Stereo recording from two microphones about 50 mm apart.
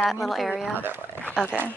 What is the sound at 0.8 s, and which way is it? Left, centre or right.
Speech, right.